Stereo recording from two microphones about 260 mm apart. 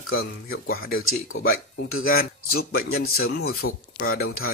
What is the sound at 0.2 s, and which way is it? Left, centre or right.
Speech, left.